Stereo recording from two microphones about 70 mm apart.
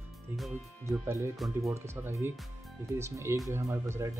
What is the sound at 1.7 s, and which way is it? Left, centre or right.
Speech, right.